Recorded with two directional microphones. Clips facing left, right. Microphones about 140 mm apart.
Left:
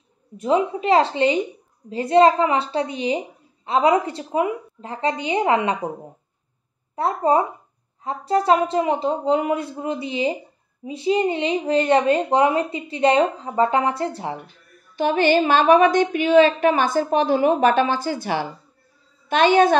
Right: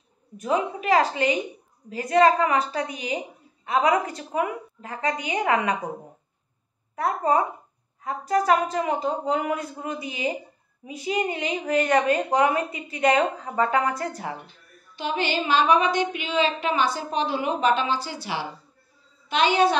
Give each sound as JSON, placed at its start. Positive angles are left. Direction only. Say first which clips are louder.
{"t": 0.4, "sound": "speech", "louder": "left 5 dB", "side_deg": 25}
{"t": 7.0, "sound": "speech", "louder": "left 3 dB", "side_deg": 30}
{"t": 15.0, "sound": "a woman's voice", "louder": "left 9 dB", "side_deg": 50}